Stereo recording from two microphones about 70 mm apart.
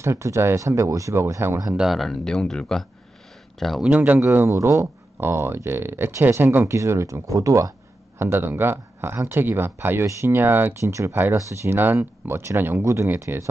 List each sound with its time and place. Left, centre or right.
0.0 s speech: right
1.8 s speech: centre
3.8 s speech: right
4.2 s speech: right
4.5 s speech: right
8.2 s speech: right
10.8 s speech: right